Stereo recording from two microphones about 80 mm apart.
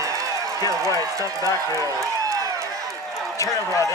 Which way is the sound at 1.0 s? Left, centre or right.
Right.